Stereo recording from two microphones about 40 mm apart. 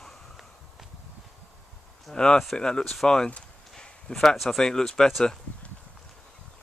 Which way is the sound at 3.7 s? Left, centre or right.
Centre.